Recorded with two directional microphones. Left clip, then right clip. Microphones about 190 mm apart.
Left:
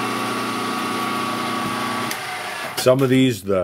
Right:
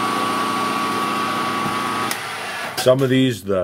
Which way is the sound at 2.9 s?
20° left (ahead or behind).